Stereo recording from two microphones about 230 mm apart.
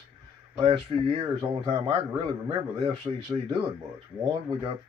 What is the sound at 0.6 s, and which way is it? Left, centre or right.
Speech, right.